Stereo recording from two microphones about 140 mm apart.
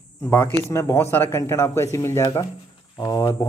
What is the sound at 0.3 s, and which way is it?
Speech, 15° left (ahead or behind).